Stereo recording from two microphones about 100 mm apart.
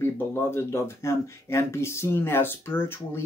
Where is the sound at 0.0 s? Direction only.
25° left (ahead or behind).